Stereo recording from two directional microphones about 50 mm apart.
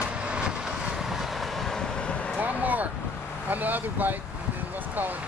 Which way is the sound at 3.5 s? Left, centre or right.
Right.